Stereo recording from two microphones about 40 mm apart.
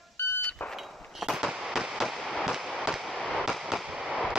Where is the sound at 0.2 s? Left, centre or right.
Left.